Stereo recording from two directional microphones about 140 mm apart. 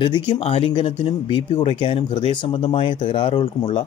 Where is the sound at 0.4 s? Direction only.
45° left (ahead or behind).